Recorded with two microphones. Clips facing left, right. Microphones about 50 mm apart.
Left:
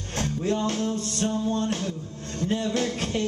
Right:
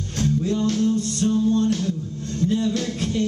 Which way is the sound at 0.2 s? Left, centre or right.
Left.